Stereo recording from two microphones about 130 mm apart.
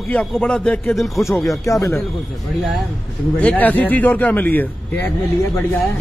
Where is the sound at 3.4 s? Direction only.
10° left (ahead or behind).